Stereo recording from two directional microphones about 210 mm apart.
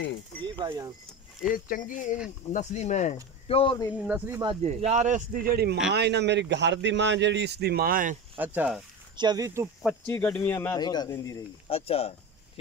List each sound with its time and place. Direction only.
0.4 s speech: 20° right (ahead or behind)
1.5 s speech: 40° left (ahead or behind); by 3.9 s 20° left (ahead or behind)
4.0 s speech: 10° right (ahead or behind)
4.4 s speech: 20° right (ahead or behind)
4.6 s a man's voice: 30° right (ahead or behind)
8.5 s speech: 5° right (ahead or behind)
9.1 s speech: 20° right (ahead or behind)
10.0 s speech: 10° left (ahead or behind)
11.7 s speech: 30° left (ahead or behind)